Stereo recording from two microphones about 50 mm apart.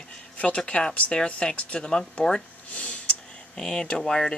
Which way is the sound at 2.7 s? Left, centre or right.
Left.